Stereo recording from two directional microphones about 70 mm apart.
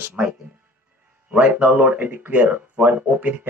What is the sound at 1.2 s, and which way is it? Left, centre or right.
A man's voice, right.